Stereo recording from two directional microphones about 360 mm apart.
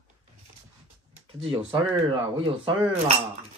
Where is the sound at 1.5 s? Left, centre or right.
Centre.